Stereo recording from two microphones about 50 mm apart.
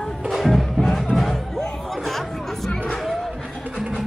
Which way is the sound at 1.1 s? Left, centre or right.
Centre.